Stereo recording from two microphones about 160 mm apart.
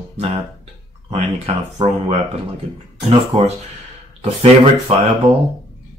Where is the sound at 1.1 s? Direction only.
35° right (ahead or behind).